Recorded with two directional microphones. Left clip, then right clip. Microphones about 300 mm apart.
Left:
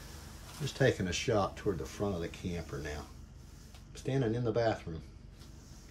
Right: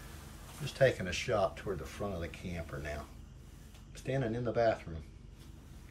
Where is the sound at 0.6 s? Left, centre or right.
Centre.